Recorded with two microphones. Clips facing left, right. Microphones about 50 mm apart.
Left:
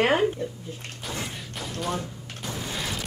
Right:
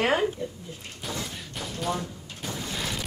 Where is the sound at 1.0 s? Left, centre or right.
Centre.